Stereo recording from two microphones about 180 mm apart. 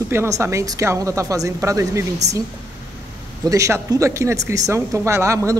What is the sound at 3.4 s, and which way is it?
A woman's voice, 15° right (ahead or behind).